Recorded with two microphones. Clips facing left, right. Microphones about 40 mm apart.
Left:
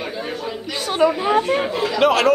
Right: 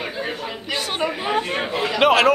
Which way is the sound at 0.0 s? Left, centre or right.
Centre.